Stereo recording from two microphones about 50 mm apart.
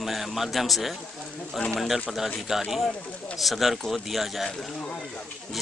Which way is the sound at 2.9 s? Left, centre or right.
Left.